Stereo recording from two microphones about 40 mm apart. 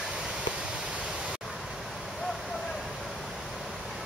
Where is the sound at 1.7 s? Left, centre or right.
Centre.